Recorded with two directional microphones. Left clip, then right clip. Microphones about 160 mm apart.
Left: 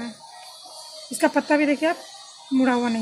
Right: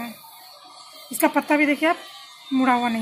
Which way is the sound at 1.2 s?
25° left (ahead or behind).